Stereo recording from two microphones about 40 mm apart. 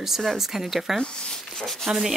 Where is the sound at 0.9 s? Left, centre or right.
Centre.